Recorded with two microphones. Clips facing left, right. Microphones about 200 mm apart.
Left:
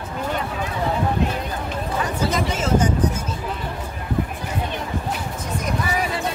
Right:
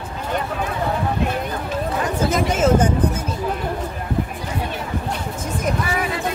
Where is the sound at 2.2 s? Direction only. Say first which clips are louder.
Right 7 dB; 50° right (ahead or behind).